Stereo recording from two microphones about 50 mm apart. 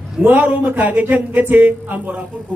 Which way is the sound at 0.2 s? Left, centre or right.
Right.